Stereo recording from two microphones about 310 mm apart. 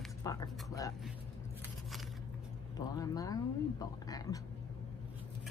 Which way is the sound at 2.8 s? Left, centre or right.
Centre.